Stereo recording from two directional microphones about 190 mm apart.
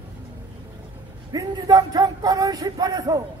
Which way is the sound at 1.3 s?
20° right (ahead or behind).